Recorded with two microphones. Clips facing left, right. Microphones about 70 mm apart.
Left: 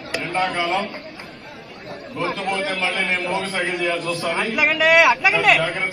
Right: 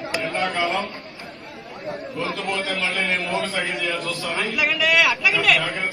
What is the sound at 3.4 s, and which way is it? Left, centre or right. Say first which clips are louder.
A man's voice: left 2 dB; left.